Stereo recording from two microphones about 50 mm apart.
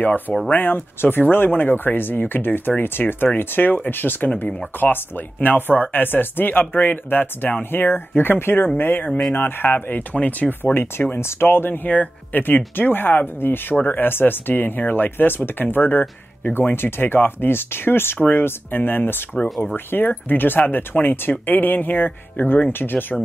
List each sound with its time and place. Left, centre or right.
0.5 s speech: left
10.1 s speech: left
10.6 s speech: left
11.4 s speech: left